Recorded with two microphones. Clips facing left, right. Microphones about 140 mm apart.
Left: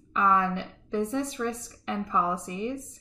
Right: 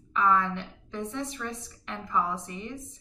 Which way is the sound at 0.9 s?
10° left (ahead or behind).